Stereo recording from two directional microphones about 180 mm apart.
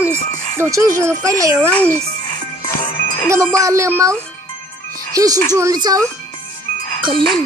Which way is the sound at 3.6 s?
15° right (ahead or behind).